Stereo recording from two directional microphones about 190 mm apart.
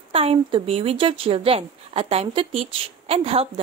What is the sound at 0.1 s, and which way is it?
Speech, 30° right (ahead or behind).